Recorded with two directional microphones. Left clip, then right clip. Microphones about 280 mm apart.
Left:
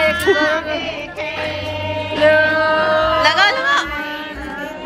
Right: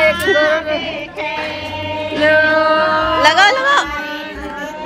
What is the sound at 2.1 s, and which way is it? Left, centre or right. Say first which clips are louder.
Music: right 1 dB; right.